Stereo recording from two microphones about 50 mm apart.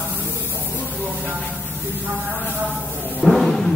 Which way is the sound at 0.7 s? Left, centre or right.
Left.